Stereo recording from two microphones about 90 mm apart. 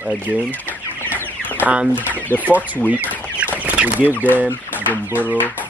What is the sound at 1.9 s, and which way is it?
Speech, 20° left (ahead or behind).